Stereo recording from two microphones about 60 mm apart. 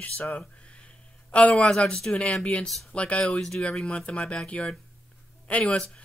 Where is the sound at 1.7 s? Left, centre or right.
Centre.